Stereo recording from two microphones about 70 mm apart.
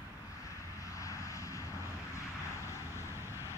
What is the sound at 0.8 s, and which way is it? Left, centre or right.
Vehicle, left.